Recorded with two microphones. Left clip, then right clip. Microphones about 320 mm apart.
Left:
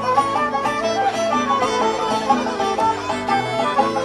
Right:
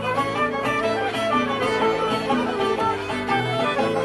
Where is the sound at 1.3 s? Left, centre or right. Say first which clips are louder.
Left 3 dB; left.